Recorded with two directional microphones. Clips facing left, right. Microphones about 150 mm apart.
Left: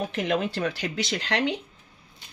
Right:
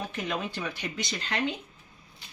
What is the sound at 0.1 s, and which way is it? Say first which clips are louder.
Speech: left 7 dB; 70° left (ahead or behind).